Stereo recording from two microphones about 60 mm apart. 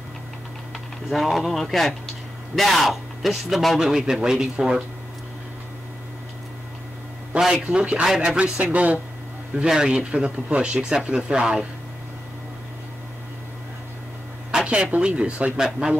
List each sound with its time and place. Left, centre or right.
1.1 s speech: centre
7.3 s speech: centre
8.1 s speech: centre
8.4 s speech: centre
14.7 s speech: centre